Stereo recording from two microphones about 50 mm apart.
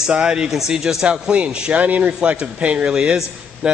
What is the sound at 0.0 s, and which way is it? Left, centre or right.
A man's voice, centre.